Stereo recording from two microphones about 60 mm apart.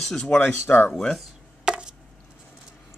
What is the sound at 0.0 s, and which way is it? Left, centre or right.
Speech, centre.